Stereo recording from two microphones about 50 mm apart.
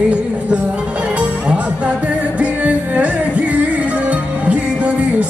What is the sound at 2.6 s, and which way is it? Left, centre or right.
Music, right.